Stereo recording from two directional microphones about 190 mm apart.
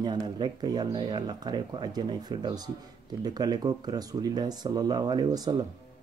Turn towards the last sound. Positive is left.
turn(degrees=-20)  # may be behind; listen again after turning